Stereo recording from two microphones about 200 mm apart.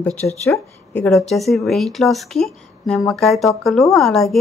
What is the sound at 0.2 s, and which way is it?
Speech, 35° left (ahead or behind).